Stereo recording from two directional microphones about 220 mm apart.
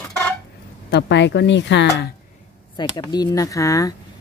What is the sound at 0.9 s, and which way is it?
Speech, 50° left (ahead or behind).